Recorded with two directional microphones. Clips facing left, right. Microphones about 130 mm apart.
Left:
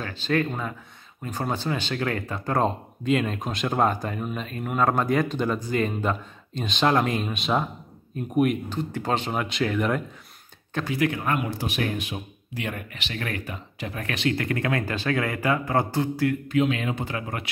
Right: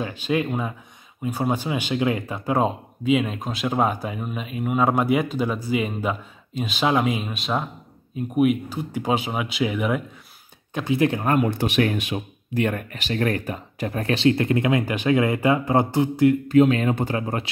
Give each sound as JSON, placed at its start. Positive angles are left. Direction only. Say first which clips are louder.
{"t": 0.0, "sound": "speech", "louder": "right 1 dB", "side_deg": -15}
{"t": 10.7, "sound": "speech", "louder": "right 4 dB", "side_deg": -20}
{"t": 11.1, "sound": "speech", "louder": "right 5 dB", "side_deg": -35}
{"t": 11.4, "sound": "speech", "louder": "right 7 dB", "side_deg": -70}
{"t": 12.5, "sound": "speech", "louder": "right 9 dB", "side_deg": -50}
{"t": 16.4, "sound": "speech", "louder": "right 7 dB", "side_deg": -40}